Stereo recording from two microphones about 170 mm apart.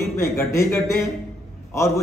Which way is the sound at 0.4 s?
15° left (ahead or behind).